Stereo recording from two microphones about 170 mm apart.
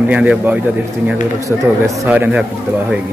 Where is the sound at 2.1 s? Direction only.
10° right (ahead or behind).